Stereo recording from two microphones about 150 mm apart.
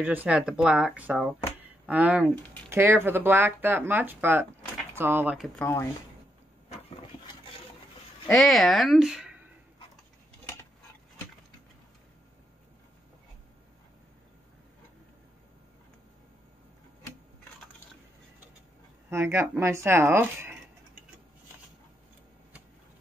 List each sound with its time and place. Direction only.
0.0 s speech: 10° right (ahead or behind)
5.6 s speech: 15° left (ahead or behind)
8.3 s speech: centre (ahead or behind)
19.0 s speech: 15° right (ahead or behind)